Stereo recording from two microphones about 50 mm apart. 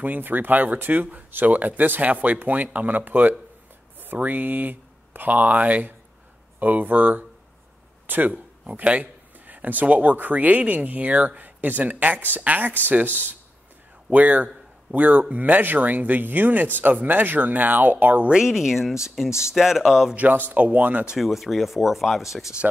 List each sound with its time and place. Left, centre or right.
0.0 s speech: right
8.6 s speech: right
18.3 s speech: centre
20.2 s speech: right
21.2 s speech: centre